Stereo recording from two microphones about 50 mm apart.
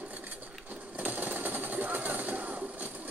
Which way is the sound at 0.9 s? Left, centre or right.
Right.